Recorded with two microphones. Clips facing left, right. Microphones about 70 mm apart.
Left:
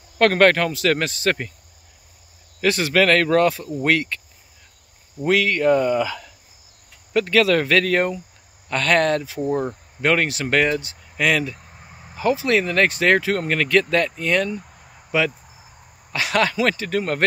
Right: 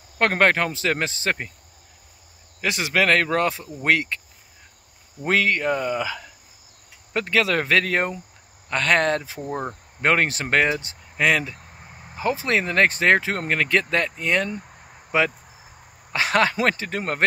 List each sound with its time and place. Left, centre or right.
0.2 s speech: right
2.6 s speech: centre
5.2 s speech: right
5.6 s speech: centre
11.5 s vehicle: centre
12.2 s speech: right